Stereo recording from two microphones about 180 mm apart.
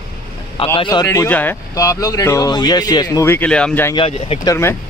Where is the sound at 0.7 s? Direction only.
25° left (ahead or behind).